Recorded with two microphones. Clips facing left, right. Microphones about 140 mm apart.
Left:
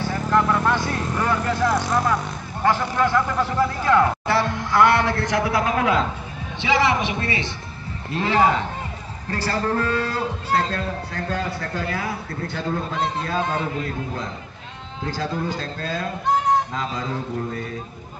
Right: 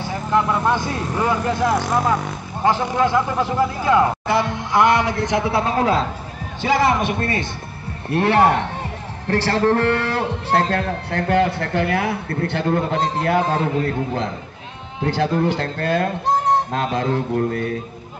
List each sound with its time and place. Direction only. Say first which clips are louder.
0.3 s speech: right 2 dB; 15° right (ahead or behind); by 6.0 s 35° right (ahead or behind)
6.6 s a man's voice: right 3 dB; 50° right (ahead or behind)
8.1 s a man's voice: right 4 dB; 65° right (ahead or behind)